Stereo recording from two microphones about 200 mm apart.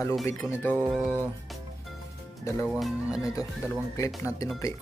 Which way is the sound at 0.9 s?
5° right (ahead or behind).